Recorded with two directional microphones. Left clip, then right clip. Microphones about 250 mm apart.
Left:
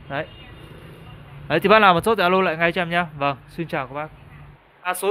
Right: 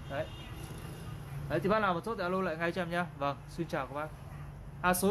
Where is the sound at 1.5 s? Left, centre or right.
Left.